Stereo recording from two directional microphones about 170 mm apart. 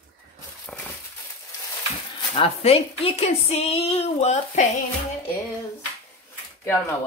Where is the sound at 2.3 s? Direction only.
35° left (ahead or behind).